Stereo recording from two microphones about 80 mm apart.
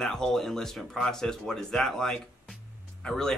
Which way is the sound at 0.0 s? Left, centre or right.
Centre.